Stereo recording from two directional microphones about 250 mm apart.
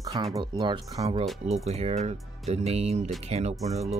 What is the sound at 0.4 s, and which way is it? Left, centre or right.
Speech, centre.